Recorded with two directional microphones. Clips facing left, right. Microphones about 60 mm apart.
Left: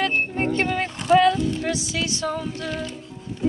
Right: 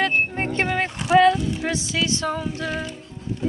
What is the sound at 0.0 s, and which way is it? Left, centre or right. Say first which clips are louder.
Music: right 1 dB; right.